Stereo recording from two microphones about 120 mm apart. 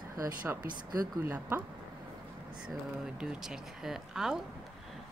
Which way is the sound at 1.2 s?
15° right (ahead or behind).